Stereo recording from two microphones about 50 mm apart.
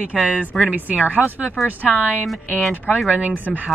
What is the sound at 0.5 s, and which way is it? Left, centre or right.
Speech, centre.